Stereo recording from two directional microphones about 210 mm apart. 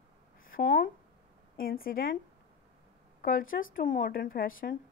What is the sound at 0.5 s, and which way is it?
Speech, 40° left (ahead or behind).